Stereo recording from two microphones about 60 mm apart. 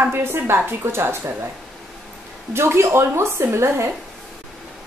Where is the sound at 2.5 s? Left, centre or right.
Right.